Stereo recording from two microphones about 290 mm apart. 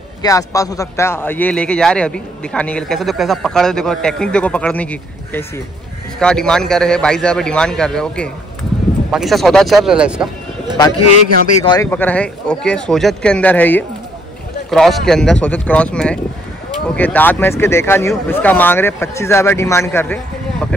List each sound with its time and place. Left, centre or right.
0.2 s a man's voice: centre
10.9 s a man's voice: left
11.6 s a man's voice: centre